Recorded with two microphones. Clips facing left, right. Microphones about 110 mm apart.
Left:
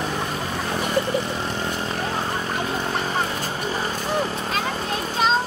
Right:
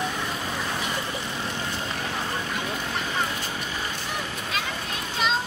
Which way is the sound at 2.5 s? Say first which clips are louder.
Left 5 dB; 40° left (ahead or behind).